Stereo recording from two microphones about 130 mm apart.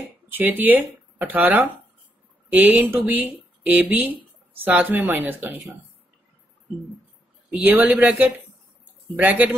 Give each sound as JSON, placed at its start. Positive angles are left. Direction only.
{"t": 0.3, "sound": "speech", "side_deg": -15}
{"t": 7.5, "sound": "speech", "side_deg": -15}